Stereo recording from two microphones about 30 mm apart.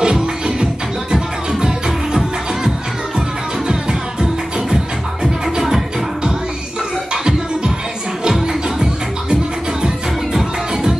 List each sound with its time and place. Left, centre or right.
0.0 s music: right
8.2 s music: right
10.3 s music: centre